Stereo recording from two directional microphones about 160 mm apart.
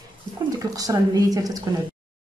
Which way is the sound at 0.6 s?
20° right (ahead or behind).